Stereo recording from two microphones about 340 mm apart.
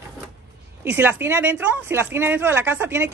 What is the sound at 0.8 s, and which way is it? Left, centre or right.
Speech, centre.